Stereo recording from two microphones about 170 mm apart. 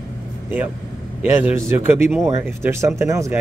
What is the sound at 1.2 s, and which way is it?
Speech, 10° right (ahead or behind).